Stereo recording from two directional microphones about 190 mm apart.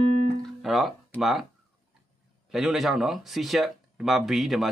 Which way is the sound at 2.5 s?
Centre (ahead or behind).